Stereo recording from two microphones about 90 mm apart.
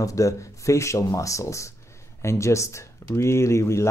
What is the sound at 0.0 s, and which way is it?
Speech, 35° left (ahead or behind).